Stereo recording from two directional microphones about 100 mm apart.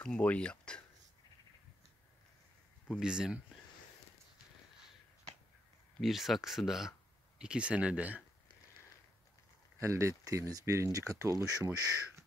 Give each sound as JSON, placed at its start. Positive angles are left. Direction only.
{"t": 0.0, "sound": "speech", "side_deg": 10}
{"t": 3.0, "sound": "speech", "side_deg": -10}
{"t": 5.9, "sound": "speech", "side_deg": 0}
{"t": 9.8, "sound": "speech", "side_deg": -30}